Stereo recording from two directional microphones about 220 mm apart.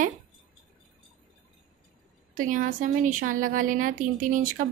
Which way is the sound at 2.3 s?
35° right (ahead or behind).